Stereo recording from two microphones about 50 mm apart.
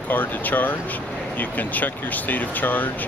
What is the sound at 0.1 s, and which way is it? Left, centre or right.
Speech, left.